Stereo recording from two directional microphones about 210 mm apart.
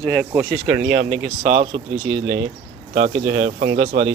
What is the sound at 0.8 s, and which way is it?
Speech, 50° right (ahead or behind).